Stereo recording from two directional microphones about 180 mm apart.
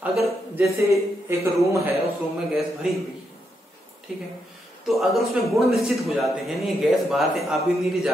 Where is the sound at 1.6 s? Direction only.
15° right (ahead or behind).